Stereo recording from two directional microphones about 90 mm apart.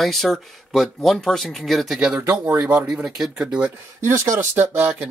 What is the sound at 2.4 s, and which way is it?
Speech, 25° right (ahead or behind).